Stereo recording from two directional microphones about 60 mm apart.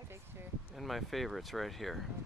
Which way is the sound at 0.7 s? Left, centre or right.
Centre.